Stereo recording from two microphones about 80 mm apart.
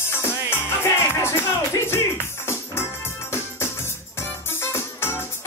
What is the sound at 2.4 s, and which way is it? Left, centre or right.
Music, left.